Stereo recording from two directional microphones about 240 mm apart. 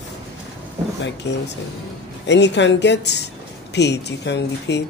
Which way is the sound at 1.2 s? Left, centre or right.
Left.